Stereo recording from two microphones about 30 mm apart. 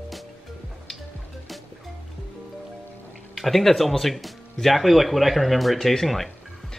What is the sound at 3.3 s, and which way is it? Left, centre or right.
A woman's voice, centre.